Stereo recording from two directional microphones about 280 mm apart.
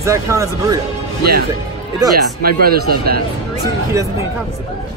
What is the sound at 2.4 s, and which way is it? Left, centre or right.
Speech, right.